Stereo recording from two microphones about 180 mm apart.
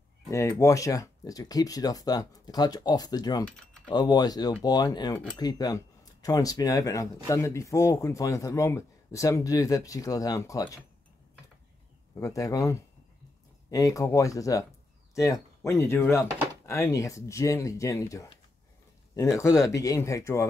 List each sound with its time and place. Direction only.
0.3 s speech: 15° left (ahead or behind)
12.2 s speech: 20° left (ahead or behind)
19.3 s speech: 15° left (ahead or behind)